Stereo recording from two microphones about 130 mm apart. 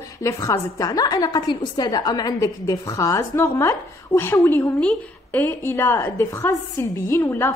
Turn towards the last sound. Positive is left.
turn(degrees=20)  # may be behind; listen again after turning